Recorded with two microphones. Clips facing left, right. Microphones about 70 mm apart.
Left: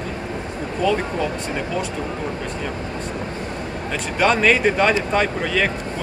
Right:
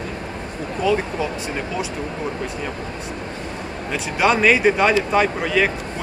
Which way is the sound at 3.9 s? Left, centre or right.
Centre.